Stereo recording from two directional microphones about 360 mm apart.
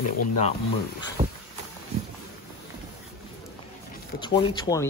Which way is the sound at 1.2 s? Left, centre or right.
Centre.